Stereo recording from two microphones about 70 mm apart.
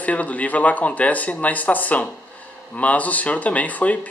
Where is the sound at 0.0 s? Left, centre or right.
Left.